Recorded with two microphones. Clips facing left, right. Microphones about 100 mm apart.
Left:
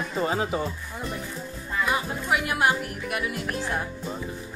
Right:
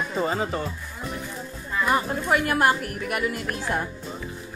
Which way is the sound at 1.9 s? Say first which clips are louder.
Right 5 dB; 45° right (ahead or behind).